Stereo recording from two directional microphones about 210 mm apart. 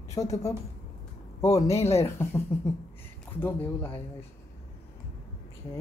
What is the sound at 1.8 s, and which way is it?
Speech, 30° left (ahead or behind).